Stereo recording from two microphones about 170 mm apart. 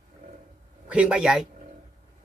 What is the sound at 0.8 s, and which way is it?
Speech, 5° right (ahead or behind).